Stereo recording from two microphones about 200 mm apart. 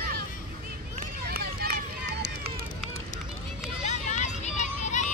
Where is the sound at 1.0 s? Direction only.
50° right (ahead or behind).